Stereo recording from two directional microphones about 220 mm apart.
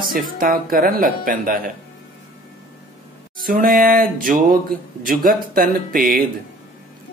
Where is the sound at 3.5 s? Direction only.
40° right (ahead or behind).